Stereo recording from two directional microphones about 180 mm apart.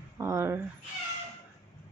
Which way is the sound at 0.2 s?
15° right (ahead or behind).